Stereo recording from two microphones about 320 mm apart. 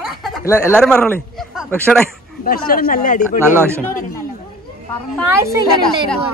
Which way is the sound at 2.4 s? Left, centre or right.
Left.